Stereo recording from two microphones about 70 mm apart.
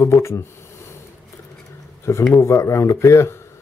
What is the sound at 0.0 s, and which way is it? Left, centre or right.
Speech, left.